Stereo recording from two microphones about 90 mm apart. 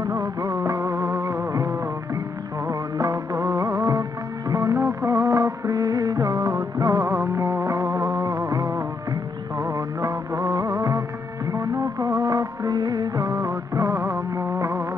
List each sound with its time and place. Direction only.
0.0 s music of bollywood: 35° right (ahead or behind)
2.7 s music: 35° right (ahead or behind)
4.5 s music of bollywood: 35° right (ahead or behind)
7.6 s music: 35° right (ahead or behind)
11.5 s music of bollywood: 35° right (ahead or behind)
13.8 s music: 35° right (ahead or behind)